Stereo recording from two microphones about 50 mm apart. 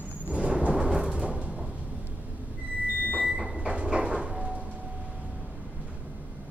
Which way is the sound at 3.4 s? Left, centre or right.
Right.